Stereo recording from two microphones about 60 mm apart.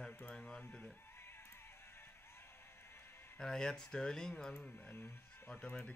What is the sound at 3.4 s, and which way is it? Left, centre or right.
Speech, centre.